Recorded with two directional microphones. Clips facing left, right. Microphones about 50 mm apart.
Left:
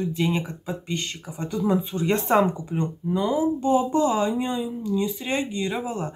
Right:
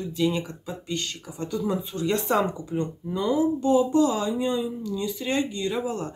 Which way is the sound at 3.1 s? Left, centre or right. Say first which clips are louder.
Even; left.